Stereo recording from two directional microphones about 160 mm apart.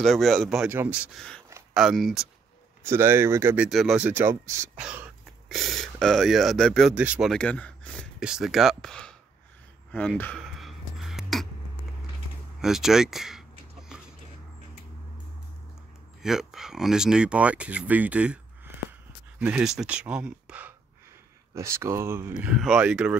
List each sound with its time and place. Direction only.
0.0 s speech: centre (ahead or behind)
0.7 s speech: 10° right (ahead or behind)
2.8 s speech: 15° right (ahead or behind); by 9.1 s 5° left (ahead or behind)
9.8 s a sound: 5° left (ahead or behind)
12.5 s a sound: 5° right (ahead or behind)
16.2 s speech: 5° right (ahead or behind)
22.3 s speech: 5° right (ahead or behind)